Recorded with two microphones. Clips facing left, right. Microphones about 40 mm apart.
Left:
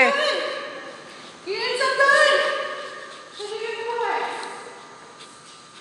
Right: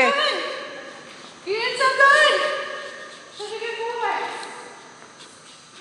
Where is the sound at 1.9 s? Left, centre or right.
Right.